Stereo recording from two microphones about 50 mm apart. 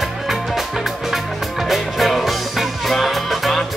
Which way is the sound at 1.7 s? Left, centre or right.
Centre.